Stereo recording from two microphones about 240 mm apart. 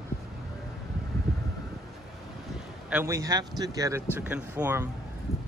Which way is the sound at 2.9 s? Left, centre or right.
Centre.